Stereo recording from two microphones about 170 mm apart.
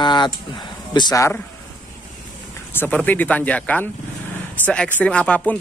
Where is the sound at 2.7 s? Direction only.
10° left (ahead or behind).